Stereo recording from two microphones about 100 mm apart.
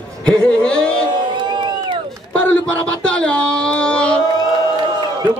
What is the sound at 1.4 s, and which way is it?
Crowd, 50° right (ahead or behind).